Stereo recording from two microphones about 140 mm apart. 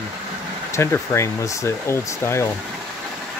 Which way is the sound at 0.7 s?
15° left (ahead or behind).